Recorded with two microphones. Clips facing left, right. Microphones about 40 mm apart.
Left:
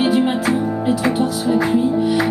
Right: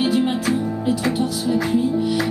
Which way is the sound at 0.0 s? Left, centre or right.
Centre.